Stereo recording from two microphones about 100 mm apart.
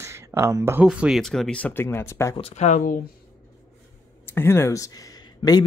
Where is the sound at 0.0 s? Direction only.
30° right (ahead or behind).